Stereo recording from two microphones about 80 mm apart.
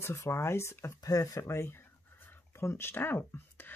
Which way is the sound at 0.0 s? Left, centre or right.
Left.